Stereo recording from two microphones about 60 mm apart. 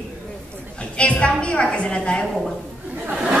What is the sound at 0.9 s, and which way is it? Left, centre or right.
A woman's voice, centre.